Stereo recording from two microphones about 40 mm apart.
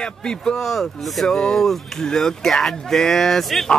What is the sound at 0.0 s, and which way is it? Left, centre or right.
Speech, left.